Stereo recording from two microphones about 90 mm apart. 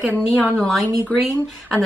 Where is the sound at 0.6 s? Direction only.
5° left (ahead or behind).